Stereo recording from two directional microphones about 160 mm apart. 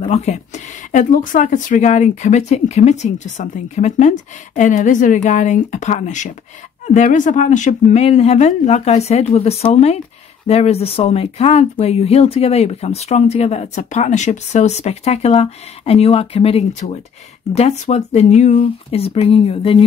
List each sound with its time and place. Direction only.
0.0 s speech: 45° left (ahead or behind)